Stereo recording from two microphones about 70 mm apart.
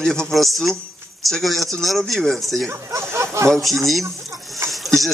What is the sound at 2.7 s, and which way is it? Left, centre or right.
Speech, right.